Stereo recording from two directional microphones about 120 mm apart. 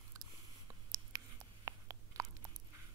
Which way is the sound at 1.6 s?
30° right (ahead or behind).